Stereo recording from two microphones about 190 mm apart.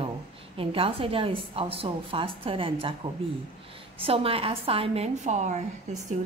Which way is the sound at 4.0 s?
30° right (ahead or behind).